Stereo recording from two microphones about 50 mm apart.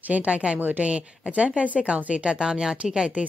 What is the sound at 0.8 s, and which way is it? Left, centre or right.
Speech, right.